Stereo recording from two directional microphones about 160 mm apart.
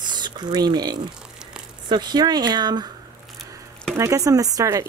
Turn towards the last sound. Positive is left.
turn(degrees=-20)  # may be behind; listen again after turning